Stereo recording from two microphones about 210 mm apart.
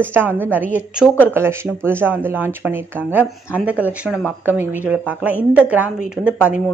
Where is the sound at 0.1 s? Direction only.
10° right (ahead or behind).